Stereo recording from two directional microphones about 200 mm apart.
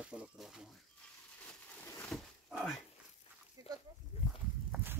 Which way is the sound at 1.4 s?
10° left (ahead or behind).